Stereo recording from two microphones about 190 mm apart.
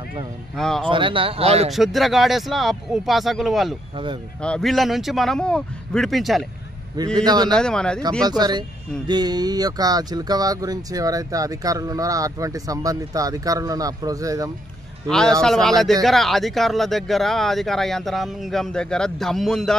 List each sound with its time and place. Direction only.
0.6 s speech: centre (ahead or behind)
0.8 s speech: 25° right (ahead or behind)
1.7 s speech: centre (ahead or behind)
7.2 s speech: 20° right (ahead or behind)
7.5 s speech: 5° left (ahead or behind)
8.2 s speech: 20° right (ahead or behind)
15.0 s speech: 5° left (ahead or behind)